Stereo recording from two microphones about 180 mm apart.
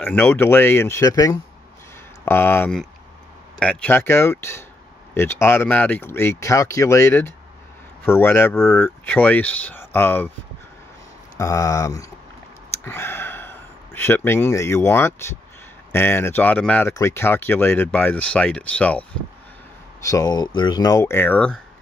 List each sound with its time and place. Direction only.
0.0 s speech: 10° left (ahead or behind)
11.3 s speech: 20° left (ahead or behind)
20.1 s speech: 20° left (ahead or behind)